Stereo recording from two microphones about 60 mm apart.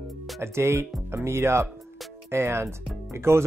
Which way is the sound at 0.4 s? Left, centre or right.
Right.